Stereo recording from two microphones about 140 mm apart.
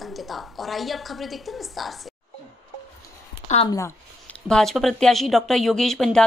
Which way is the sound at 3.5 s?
60° left (ahead or behind).